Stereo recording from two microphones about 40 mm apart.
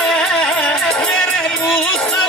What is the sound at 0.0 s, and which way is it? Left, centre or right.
Music, centre.